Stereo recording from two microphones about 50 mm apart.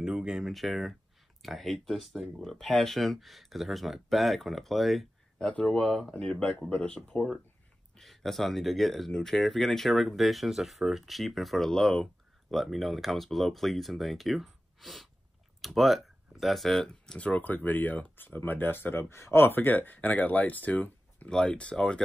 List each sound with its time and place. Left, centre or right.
0.0 s a sound: centre
0.5 s speech: centre
5.5 s speech: left
5.8 s speech: centre
6.7 s speech: left
8.0 s speech: centre
17.0 s speech: centre
17.3 s speech: left
21.3 s speech: centre